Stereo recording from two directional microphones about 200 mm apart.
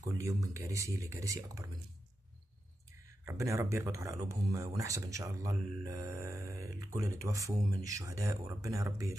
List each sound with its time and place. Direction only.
0.0 s speech: 15° right (ahead or behind)
3.3 s speech: 15° right (ahead or behind)